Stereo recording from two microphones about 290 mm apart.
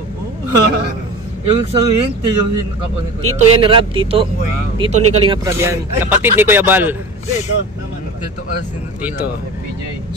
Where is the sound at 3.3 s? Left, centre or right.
Centre.